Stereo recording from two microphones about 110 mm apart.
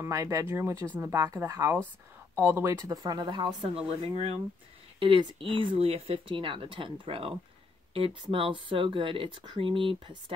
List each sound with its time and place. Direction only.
0.0 s speech: 25° right (ahead or behind)
2.8 s speech: 35° right (ahead or behind)
3.7 s speech: 60° right (ahead or behind)